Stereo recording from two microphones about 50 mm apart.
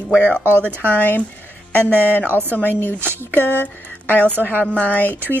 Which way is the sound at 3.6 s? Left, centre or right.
Left.